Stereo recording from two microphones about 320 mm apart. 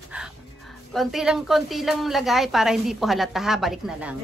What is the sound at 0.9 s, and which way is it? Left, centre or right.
A woman's voice, centre.